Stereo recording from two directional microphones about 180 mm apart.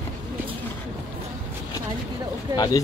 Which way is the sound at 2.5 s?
25° left (ahead or behind).